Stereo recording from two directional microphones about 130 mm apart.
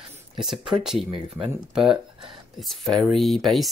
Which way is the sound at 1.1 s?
40° right (ahead or behind).